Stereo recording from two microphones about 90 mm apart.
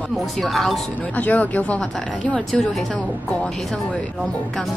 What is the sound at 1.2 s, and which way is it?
Speech, 15° left (ahead or behind).